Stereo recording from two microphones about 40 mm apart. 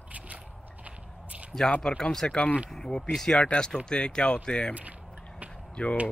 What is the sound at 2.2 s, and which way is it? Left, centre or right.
Speech, left.